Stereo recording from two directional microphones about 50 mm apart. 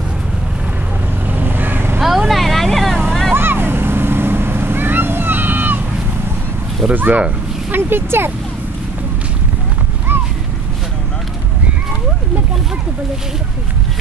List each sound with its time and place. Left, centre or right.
1.2 s vehicle: right
2.0 s vehicle: centre
3.3 s vehicle: right
6.9 s speech: right
7.7 s speech: right